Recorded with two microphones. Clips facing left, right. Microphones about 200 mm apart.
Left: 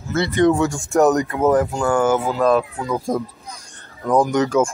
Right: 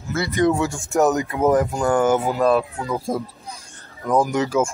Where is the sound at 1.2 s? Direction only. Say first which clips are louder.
Left 1 dB; 20° right (ahead or behind).